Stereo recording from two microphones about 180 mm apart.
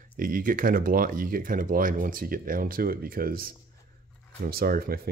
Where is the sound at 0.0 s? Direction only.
50° right (ahead or behind).